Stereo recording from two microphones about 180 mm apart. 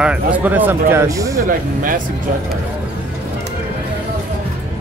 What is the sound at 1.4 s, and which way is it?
Speech, 50° right (ahead or behind).